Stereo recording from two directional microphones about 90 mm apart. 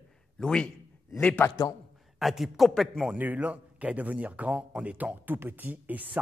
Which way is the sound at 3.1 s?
20° right (ahead or behind).